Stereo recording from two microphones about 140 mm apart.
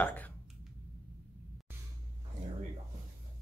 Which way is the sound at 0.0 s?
10° left (ahead or behind).